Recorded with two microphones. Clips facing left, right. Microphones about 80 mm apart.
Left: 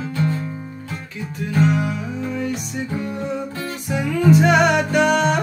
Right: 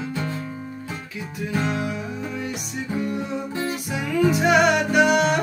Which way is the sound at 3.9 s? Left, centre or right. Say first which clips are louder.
Left 5 dB; centre.